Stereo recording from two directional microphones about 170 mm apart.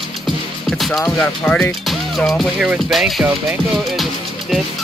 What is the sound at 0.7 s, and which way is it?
Speech, centre (ahead or behind).